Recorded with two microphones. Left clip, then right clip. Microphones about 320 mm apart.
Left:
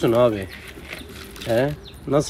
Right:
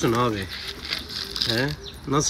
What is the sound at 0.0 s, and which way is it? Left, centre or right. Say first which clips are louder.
Speech: left 5 dB; centre.